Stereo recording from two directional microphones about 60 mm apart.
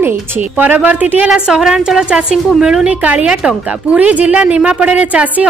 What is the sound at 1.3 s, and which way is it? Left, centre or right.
A woman's voice, centre.